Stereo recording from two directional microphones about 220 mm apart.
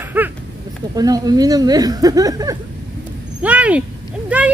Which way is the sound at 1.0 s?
15° right (ahead or behind).